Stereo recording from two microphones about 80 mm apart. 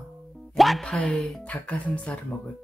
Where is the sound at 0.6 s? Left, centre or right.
Centre.